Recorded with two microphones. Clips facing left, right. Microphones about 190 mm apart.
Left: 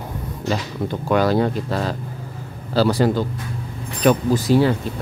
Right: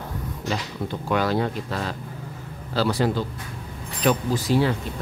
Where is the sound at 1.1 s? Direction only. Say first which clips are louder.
Left 5 dB; 40° left (ahead or behind).